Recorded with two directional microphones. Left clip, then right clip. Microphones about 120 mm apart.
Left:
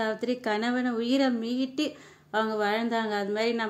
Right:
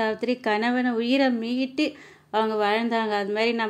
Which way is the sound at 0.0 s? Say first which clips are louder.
Right 4 dB; 15° right (ahead or behind).